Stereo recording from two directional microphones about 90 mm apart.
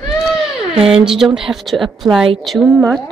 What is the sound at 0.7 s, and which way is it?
A woman's voice, 5° right (ahead or behind).